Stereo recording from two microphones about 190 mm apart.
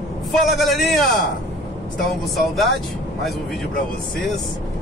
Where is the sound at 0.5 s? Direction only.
Centre (ahead or behind).